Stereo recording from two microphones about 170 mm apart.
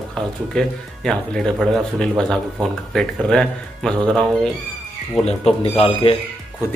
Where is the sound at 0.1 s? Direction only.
5° left (ahead or behind).